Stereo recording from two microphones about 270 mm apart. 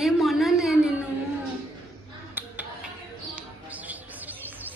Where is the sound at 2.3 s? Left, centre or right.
Centre.